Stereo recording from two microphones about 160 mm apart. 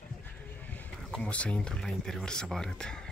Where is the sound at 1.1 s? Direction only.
10° left (ahead or behind).